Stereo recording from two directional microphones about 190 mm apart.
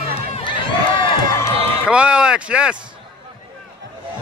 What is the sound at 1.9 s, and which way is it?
Speech, 5° right (ahead or behind).